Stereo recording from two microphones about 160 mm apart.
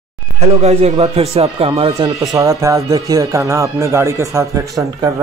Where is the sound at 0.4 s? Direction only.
40° right (ahead or behind).